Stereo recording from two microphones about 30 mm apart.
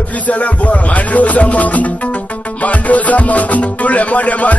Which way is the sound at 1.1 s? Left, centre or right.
Left.